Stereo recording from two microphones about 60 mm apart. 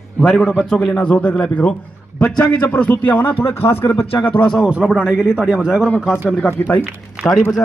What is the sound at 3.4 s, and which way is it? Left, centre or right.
Speech, left.